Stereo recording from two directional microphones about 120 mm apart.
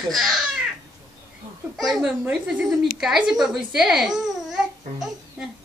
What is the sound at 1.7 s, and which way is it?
Speech, centre (ahead or behind).